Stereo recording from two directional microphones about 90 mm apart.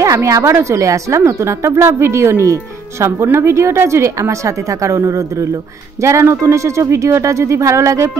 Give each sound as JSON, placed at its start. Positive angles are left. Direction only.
{"t": 0.0, "sound": "a woman's voice", "side_deg": -35}